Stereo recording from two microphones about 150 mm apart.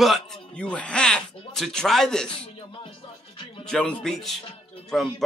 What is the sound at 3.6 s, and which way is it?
Speech, 5° left (ahead or behind).